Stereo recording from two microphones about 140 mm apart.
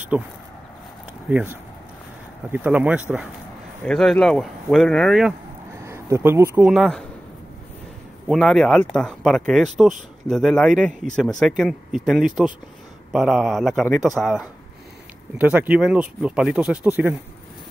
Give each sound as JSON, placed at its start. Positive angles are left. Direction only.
{"t": 0.1, "sound": "speech", "side_deg": -10}
{"t": 1.3, "sound": "speech", "side_deg": -15}
{"t": 3.8, "sound": "speech", "side_deg": 5}
{"t": 5.9, "sound": "speech", "side_deg": -20}
{"t": 8.3, "sound": "speech", "side_deg": 5}